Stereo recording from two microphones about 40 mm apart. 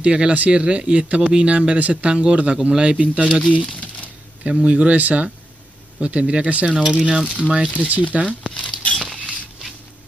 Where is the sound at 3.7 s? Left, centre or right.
Left.